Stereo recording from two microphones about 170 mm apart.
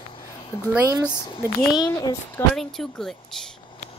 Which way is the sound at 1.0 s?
15° left (ahead or behind).